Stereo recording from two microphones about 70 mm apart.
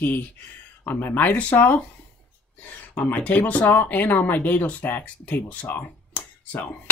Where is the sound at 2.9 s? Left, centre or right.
Left.